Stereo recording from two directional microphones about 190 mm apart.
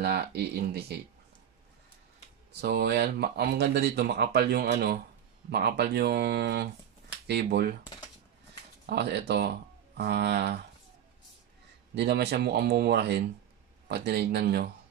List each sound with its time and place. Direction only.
0.0 s speech: 60° right (ahead or behind)
2.5 s speech: 60° right (ahead or behind)
8.8 s speech: 60° right (ahead or behind)
11.9 s speech: 60° right (ahead or behind)